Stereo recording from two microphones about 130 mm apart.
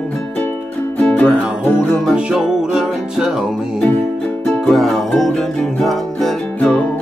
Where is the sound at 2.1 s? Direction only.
5° right (ahead or behind).